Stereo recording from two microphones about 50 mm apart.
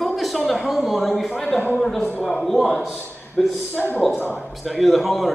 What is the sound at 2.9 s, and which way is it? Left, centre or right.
Speech, centre.